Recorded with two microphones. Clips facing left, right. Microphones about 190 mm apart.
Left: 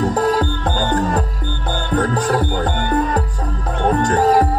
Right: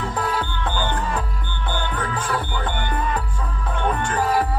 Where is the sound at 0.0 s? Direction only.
40° left (ahead or behind).